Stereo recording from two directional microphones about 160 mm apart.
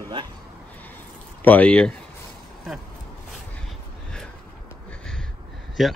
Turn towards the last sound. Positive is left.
turn(degrees=0)  # may be behind; listen again after turning